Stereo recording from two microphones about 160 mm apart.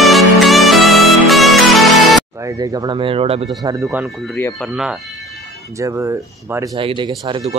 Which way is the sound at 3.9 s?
5° right (ahead or behind).